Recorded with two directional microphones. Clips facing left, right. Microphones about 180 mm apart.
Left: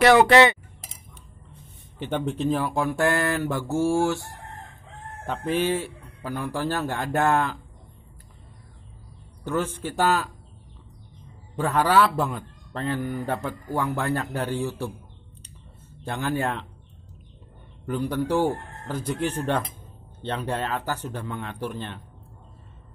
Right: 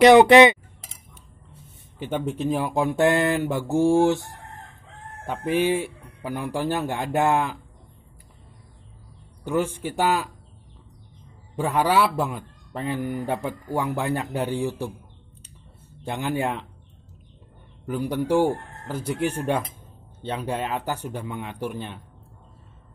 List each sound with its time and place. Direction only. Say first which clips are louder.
0.0 s a man's voice: right 4 dB; 20° right (ahead or behind)
2.0 s a man's voice: even; 10° right (ahead or behind)
9.5 s a man's voice: right 2 dB; 15° right (ahead or behind)
11.5 s a man's voice: even; 15° right (ahead or behind)
16.0 s a man's voice: right 1 dB; 15° right (ahead or behind)
17.8 s a man's voice: right 1 dB; 10° right (ahead or behind)